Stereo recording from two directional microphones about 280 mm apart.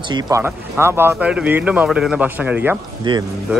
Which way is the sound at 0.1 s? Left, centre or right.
Centre.